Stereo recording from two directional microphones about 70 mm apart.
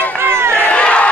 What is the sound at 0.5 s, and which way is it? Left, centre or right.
Crowd, centre.